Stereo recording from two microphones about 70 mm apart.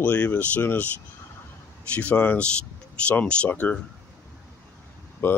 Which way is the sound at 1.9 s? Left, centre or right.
Centre.